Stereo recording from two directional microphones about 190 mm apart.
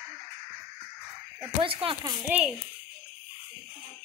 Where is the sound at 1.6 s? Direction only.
30° right (ahead or behind).